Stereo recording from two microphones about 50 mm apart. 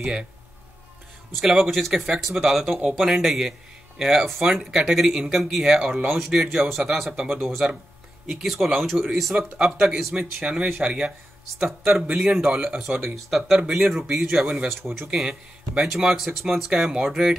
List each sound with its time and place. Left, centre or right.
0.0 s speech: centre
1.4 s speech: centre
10.4 s speech: right
11.5 s speech: centre
14.4 s speech: centre
15.8 s speech: centre